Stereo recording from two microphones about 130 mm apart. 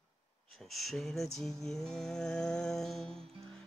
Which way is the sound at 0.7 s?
Centre (ahead or behind).